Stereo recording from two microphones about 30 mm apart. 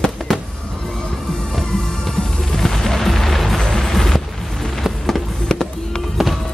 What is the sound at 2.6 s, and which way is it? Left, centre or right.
Music, centre.